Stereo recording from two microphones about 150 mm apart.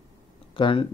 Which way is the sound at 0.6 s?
35° left (ahead or behind).